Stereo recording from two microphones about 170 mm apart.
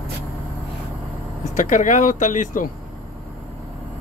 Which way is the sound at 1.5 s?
50° left (ahead or behind).